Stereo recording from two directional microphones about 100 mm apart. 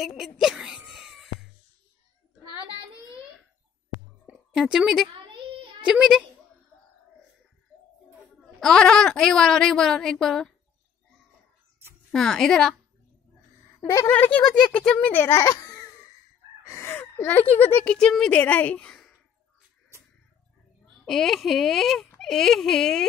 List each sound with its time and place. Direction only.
0.0 s speech: 5° right (ahead or behind)
0.4 s wail: 5° right (ahead or behind)
4.6 s speech: 5° right (ahead or behind)
8.5 s speech: 5° left (ahead or behind)
12.1 s speech: 5° left (ahead or behind)
14.0 s a woman's voice: 15° left (ahead or behind)
15.2 s baby laughter: 35° left (ahead or behind)
16.6 s a sound: 30° left (ahead or behind)
17.7 s a woman's voice: 10° left (ahead or behind)
21.0 s speech: 5° left (ahead or behind)